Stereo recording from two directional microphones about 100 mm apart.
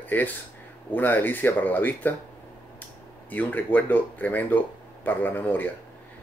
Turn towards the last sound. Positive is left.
turn(degrees=20)  # may be behind; listen again after turning